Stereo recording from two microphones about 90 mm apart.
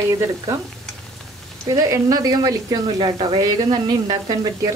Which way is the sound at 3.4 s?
50° right (ahead or behind).